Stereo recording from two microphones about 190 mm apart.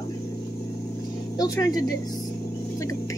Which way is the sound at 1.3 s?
20° left (ahead or behind).